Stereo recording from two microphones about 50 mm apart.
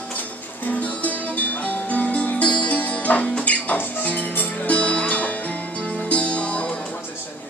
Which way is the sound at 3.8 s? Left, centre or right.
Left.